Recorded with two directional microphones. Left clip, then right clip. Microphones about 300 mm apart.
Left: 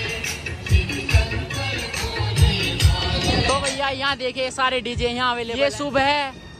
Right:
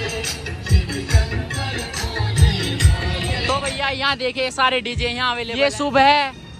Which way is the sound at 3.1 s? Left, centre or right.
Left.